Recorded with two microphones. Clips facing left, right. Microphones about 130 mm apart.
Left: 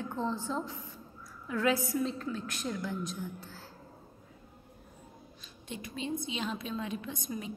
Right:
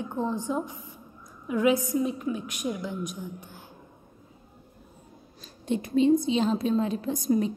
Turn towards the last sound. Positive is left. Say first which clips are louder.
# right 13 dB
turn(degrees=-40)  # may be behind; listen again after turning